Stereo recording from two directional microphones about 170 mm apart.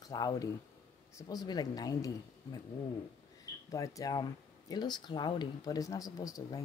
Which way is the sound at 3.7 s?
20° left (ahead or behind).